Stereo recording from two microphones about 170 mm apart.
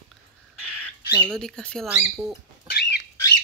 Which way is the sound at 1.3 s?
5° left (ahead or behind).